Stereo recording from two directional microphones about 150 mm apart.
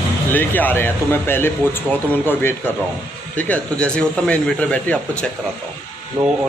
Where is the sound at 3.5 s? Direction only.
5° left (ahead or behind).